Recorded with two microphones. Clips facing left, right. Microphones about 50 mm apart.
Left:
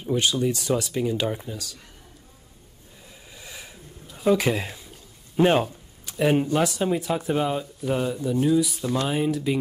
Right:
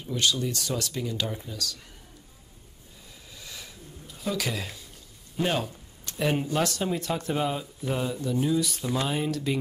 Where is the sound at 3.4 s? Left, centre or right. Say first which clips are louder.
Left 2 dB; left.